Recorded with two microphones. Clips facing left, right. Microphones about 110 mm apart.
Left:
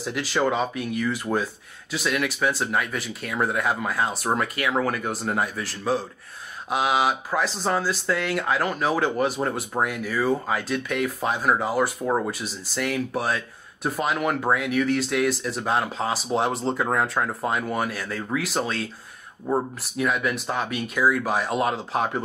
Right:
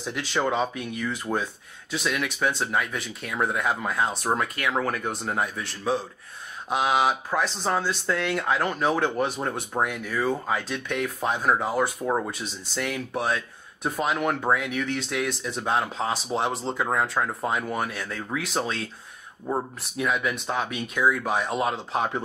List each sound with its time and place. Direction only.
0.0 s speech: 5° left (ahead or behind)